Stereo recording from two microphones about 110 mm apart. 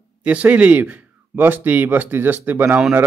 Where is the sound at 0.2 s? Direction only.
15° right (ahead or behind).